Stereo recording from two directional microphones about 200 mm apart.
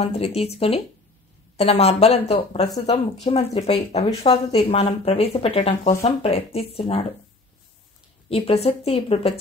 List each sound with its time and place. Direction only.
0.0 s speech: 30° left (ahead or behind)
8.3 s speech: 30° left (ahead or behind)